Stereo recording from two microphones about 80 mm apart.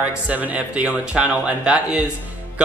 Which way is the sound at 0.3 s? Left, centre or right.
Centre.